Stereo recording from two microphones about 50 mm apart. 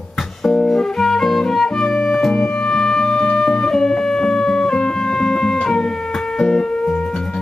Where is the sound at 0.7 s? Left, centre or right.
Centre.